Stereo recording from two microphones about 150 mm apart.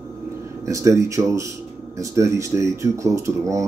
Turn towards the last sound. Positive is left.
turn(degrees=-20)  # may be behind; listen again after turning